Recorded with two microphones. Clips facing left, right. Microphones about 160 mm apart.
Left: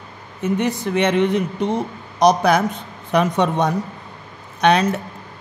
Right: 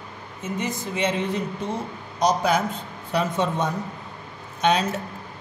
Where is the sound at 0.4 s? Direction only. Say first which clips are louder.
Left 8 dB; 65° left (ahead or behind).